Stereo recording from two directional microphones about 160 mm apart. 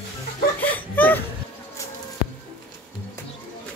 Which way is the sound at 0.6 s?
10° left (ahead or behind).